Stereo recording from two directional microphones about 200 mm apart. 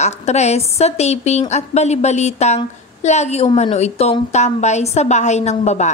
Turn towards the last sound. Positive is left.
turn(degrees=35)  # may be behind; listen again after turning